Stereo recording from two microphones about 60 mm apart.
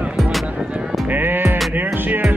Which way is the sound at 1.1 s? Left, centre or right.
Right.